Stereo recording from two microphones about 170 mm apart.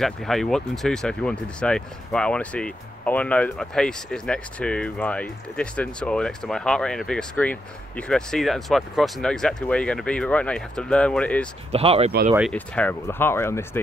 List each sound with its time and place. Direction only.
0.0 s speech: centre (ahead or behind)
11.7 s speech: 35° right (ahead or behind)
12.5 s speech: 10° left (ahead or behind)